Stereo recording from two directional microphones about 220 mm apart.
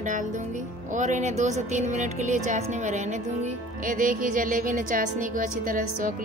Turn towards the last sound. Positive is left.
turn(degrees=-40)  # may be behind; listen again after turning